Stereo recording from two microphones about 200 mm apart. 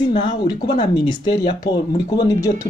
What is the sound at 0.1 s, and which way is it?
A man's voice, 25° left (ahead or behind).